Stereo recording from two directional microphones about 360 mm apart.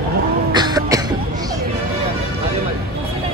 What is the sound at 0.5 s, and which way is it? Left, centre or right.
Cough, centre.